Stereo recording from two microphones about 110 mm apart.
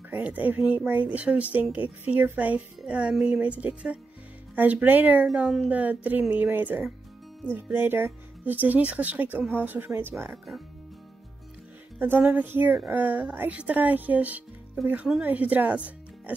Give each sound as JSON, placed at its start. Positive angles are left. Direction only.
{"t": 0.1, "sound": "speech", "side_deg": -15}
{"t": 10.3, "sound": "speech", "side_deg": 0}
{"t": 12.0, "sound": "speech", "side_deg": -15}